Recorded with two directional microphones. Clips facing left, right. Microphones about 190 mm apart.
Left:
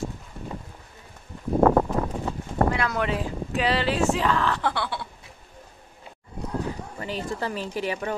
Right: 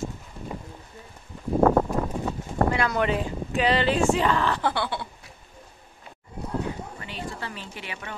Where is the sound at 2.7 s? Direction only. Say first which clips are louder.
Right 2 dB; centre (ahead or behind).